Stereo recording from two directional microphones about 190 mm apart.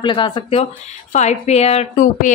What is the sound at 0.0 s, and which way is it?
A woman's voice, 25° left (ahead or behind).